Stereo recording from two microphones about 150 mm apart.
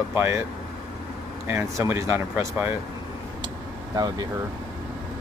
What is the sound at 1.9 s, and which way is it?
Speech, 15° right (ahead or behind).